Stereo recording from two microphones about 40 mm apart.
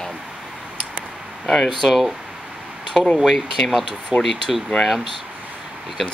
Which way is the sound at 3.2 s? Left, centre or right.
Centre.